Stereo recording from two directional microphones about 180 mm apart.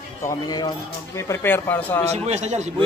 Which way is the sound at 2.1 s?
40° right (ahead or behind).